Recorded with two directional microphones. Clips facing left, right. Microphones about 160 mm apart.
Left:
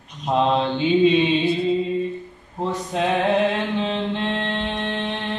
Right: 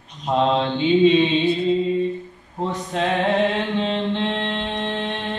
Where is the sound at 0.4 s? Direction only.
5° left (ahead or behind).